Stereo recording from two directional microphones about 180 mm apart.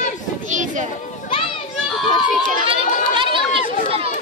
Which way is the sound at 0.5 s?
45° right (ahead or behind).